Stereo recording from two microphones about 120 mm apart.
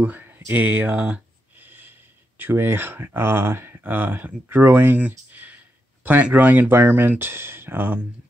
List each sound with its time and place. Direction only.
0.0 s speech: 15° right (ahead or behind)
5.3 s clicking: 15° right (ahead or behind)
6.0 s speech: 15° right (ahead or behind)